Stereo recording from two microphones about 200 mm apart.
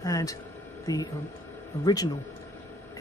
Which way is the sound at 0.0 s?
15° left (ahead or behind).